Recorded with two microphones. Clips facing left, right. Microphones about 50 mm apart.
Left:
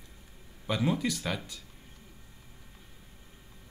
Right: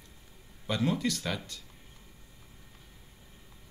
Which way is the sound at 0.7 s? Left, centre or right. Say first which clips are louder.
Even; centre.